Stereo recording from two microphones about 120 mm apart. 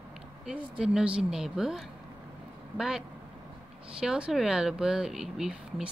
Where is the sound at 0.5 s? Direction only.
10° right (ahead or behind).